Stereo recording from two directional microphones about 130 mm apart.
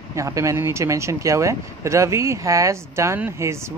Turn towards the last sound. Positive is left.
turn(degrees=-20)  # may be behind; listen again after turning